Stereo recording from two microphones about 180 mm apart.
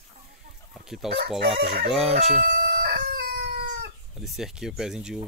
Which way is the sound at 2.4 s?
55° right (ahead or behind).